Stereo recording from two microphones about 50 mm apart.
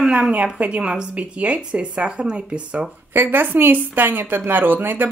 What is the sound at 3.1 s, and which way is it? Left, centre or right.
Speech, right.